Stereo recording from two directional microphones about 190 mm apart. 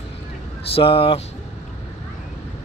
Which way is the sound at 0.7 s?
30° left (ahead or behind).